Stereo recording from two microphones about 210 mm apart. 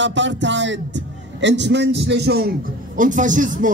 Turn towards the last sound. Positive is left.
turn(degrees=-40)  # may be behind; listen again after turning